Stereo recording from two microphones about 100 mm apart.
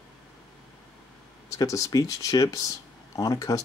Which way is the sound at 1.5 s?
35° left (ahead or behind).